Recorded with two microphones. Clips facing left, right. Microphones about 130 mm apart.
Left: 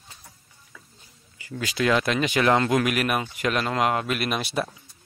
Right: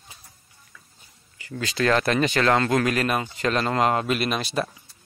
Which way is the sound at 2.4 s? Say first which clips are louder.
Left 2 dB; 15° left (ahead or behind).